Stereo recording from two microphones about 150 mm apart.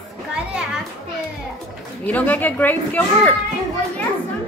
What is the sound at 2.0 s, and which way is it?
A woman's voice, 10° left (ahead or behind).